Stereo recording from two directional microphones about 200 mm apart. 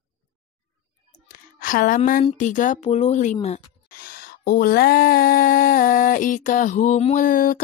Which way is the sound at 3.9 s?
45° left (ahead or behind).